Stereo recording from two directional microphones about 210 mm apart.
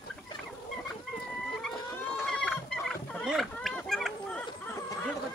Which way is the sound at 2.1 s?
Centre (ahead or behind).